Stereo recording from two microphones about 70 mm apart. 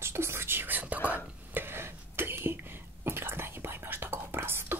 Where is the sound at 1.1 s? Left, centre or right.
Right.